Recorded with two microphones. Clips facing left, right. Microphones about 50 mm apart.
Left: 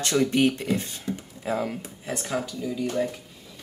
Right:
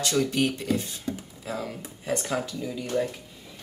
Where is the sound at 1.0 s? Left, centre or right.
Left.